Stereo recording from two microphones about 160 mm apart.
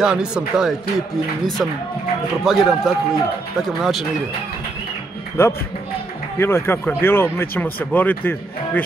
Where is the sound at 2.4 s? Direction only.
Centre (ahead or behind).